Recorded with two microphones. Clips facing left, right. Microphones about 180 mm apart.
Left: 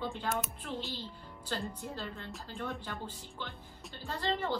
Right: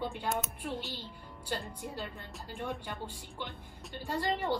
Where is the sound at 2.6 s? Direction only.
15° right (ahead or behind).